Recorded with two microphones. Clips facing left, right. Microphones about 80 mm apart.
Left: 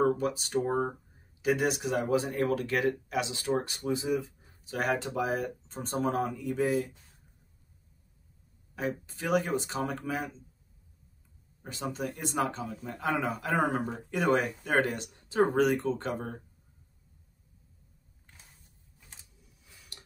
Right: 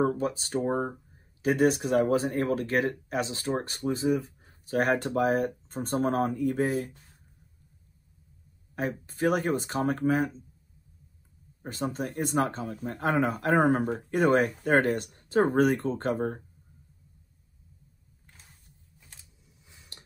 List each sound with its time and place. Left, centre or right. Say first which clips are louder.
0.2 s speech: right 1 dB; right
8.7 s speech: right 2 dB; right
11.6 s speech: right 3 dB; right
19.4 s a sound: right 1 dB; right